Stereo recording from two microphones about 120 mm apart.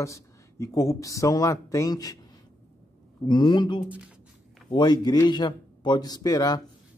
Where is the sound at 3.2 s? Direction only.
40° left (ahead or behind).